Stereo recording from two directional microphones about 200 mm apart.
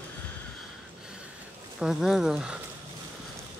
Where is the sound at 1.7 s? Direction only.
Centre (ahead or behind).